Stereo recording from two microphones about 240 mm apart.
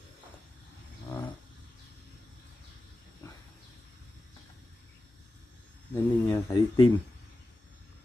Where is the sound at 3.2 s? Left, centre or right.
Centre.